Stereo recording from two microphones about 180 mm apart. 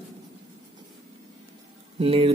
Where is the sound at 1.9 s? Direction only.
30° right (ahead or behind).